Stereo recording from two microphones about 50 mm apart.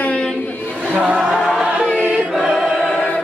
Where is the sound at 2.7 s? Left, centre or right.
Left.